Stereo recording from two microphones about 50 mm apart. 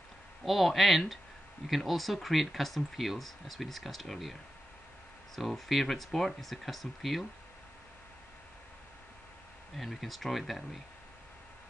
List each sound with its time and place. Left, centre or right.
0.5 s speech: centre
9.8 s speech: centre